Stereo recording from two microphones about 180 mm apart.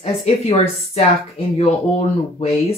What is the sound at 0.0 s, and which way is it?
Speech, 35° left (ahead or behind).